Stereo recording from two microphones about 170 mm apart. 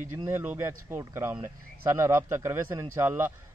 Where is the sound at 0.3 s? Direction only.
15° right (ahead or behind).